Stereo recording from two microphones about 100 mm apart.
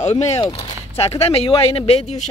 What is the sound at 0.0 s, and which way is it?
Speech, 90° left.